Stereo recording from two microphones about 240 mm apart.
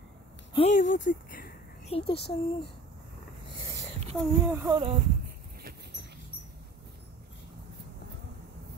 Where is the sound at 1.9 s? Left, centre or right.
Left.